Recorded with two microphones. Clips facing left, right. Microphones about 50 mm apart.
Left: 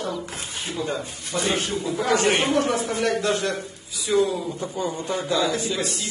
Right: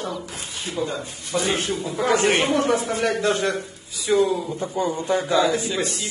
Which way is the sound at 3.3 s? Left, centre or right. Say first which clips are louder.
Right 2 dB; right.